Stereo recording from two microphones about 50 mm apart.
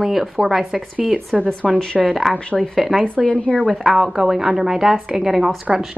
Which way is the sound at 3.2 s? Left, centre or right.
Left.